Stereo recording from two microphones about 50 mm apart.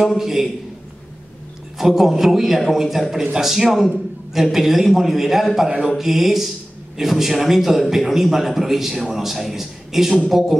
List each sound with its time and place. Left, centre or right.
0.0 s a man's voice: centre
1.8 s a man's voice: centre
5.7 s speech: right
5.9 s a man's voice: centre